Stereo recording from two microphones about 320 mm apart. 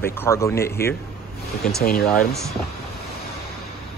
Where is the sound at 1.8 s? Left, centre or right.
Left.